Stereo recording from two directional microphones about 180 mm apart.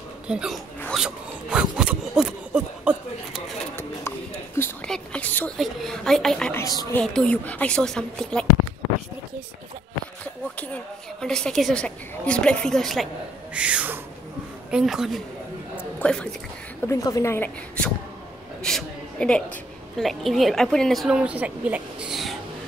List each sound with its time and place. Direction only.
0.3 s a woman's voice: 5° right (ahead or behind)
0.9 s a sound: 5° right (ahead or behind)
3.7 s speech: 10° left (ahead or behind)
6.5 s speech: 20° left (ahead or behind)
7.0 s a woman's voice: 5° left (ahead or behind)
10.2 s a sound: 5° left (ahead or behind); by 14.0 s 10° right (ahead or behind)
14.7 s a woman's voice: 5° right (ahead or behind)
15.8 s a sound: 5° left (ahead or behind)
16.8 s a woman's voice: 20° left (ahead or behind); by 22.4 s centre (ahead or behind)